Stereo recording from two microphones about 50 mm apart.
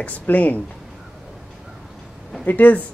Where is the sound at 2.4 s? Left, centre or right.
Left.